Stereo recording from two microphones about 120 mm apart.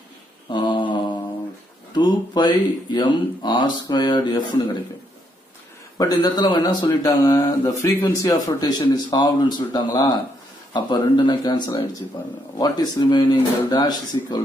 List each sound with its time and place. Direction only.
0.5 s mantra: 40° left (ahead or behind)
1.9 s speech: 40° left (ahead or behind)
5.9 s speech: 35° left (ahead or behind)
7.0 s speech: 20° left (ahead or behind)